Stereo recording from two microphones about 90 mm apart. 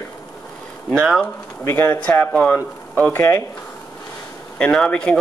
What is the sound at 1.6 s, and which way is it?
Speech, 30° left (ahead or behind).